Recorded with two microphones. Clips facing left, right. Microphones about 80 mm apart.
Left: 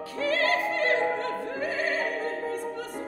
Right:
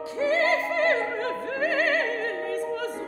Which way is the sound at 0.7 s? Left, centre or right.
Right.